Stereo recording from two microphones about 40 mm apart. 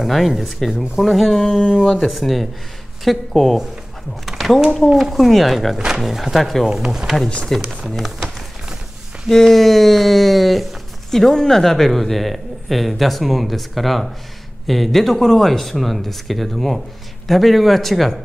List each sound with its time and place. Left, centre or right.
0.1 s speech: centre
4.3 s a sound: centre
4.9 s speech: centre
7.5 s speech: centre
7.9 s a sound: centre
9.3 s speech: centre
11.1 s speech: centre